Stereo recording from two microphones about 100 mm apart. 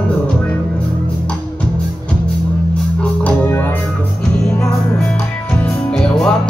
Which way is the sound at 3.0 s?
15° left (ahead or behind).